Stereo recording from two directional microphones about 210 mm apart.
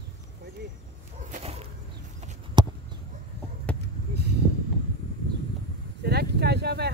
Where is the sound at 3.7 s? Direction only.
5° left (ahead or behind).